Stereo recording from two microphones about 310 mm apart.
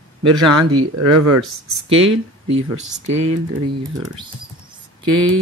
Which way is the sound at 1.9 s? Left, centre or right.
Centre.